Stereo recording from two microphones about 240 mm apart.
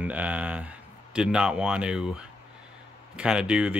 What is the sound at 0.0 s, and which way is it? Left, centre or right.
Speech, centre.